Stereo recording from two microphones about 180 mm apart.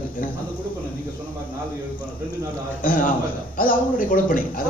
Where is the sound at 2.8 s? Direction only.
50° left (ahead or behind).